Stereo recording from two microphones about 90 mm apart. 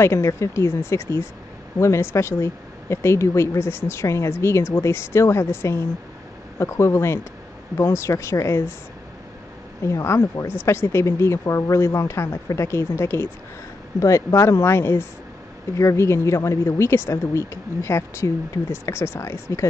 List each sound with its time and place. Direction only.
0.0 s speech: 30° left (ahead or behind)
9.8 s speech: 30° left (ahead or behind)